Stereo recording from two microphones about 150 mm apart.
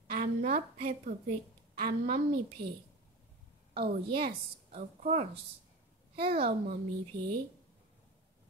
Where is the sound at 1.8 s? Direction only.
75° right (ahead or behind).